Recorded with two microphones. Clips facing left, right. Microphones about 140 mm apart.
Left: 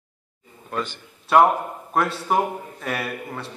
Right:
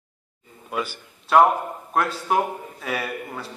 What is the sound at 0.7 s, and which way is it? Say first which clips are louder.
A man's voice: even; 5° right (ahead or behind).